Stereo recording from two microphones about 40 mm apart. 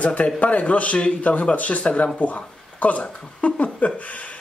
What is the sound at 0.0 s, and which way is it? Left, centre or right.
Speech, left.